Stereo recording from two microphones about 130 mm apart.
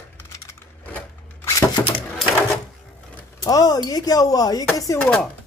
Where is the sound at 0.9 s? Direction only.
20° left (ahead or behind).